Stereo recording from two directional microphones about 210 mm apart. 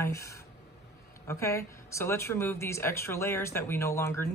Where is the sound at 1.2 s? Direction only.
15° left (ahead or behind).